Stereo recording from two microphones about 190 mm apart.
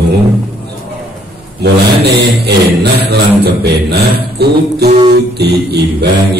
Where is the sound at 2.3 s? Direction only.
60° right (ahead or behind).